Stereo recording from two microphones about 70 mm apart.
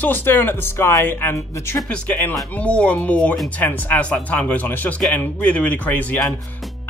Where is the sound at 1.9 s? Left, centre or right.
Centre.